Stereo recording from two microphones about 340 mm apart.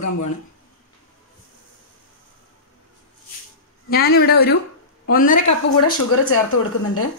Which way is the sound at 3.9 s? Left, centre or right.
Left.